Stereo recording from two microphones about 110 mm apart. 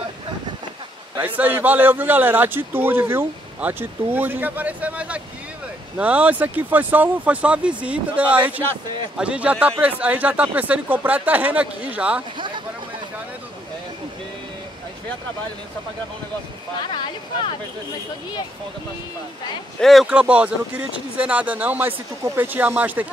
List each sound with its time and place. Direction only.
1.2 s a man's voice: 15° right (ahead or behind)
12.4 s a sound: 45° right (ahead or behind)
19.8 s a man's voice: centre (ahead or behind); by 23.0 s 15° right (ahead or behind)